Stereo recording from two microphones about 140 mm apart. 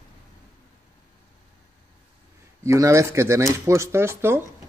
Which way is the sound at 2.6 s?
20° right (ahead or behind).